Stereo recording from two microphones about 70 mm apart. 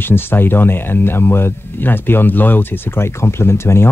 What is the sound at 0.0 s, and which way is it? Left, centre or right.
Speech, left.